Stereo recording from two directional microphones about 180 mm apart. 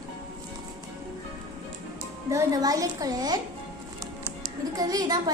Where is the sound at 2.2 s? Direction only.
20° right (ahead or behind).